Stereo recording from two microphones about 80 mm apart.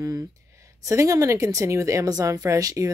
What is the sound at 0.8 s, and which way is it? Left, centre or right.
A woman's voice, right.